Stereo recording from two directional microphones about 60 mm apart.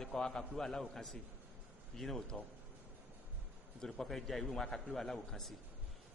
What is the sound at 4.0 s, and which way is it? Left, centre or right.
A man's voice, centre.